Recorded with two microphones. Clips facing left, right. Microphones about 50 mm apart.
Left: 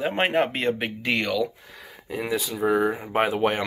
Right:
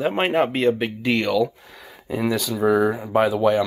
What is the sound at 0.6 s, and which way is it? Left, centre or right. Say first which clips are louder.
Speech: right 5 dB; left.